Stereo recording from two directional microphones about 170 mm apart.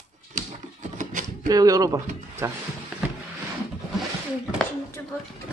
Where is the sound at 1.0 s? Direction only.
45° right (ahead or behind).